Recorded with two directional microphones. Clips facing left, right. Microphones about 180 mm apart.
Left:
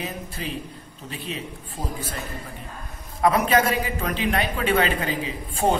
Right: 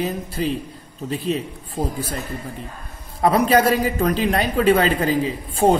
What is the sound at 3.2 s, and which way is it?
Speech, 35° right (ahead or behind).